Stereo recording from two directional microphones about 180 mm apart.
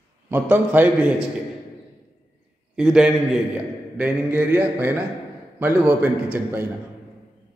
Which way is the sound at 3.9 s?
10° right (ahead or behind).